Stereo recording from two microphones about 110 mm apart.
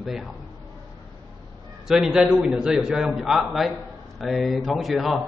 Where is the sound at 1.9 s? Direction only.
5° right (ahead or behind).